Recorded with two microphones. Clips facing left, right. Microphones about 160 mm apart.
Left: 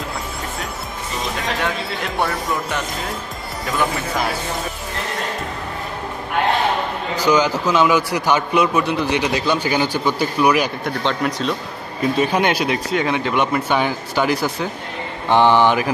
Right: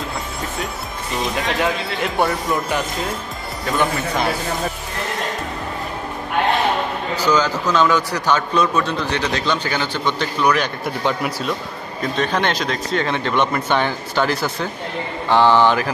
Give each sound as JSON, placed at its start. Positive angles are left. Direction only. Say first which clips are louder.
{"t": 7.2, "sound": "a man's voice", "louder": "left 2 dB", "side_deg": 10}
{"t": 11.0, "sound": "speech", "louder": "left 1 dB", "side_deg": -10}
{"t": 12.0, "sound": "a man's voice", "louder": "left 3 dB", "side_deg": 10}